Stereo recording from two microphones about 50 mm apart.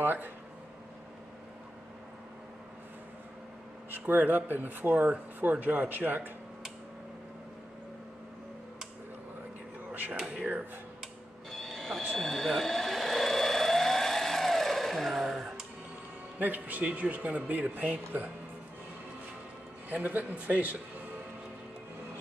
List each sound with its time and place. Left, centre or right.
0.0 s speech: right
3.9 s speech: right
11.5 s train: centre
12.2 s a sound: centre
16.3 s speech: right
19.9 s speech: right